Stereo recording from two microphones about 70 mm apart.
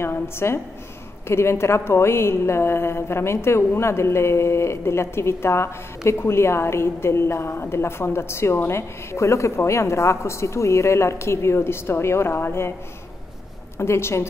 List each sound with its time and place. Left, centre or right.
0.0 s a woman's voice: left
13.7 s a woman's voice: left